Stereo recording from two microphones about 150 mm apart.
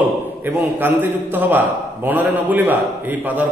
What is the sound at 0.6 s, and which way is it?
A man's voice, 15° right (ahead or behind).